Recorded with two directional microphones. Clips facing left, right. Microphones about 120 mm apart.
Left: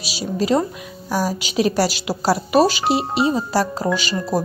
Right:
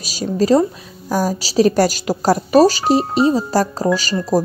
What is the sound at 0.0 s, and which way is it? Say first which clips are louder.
Speech: right 4 dB; 45° right (ahead or behind).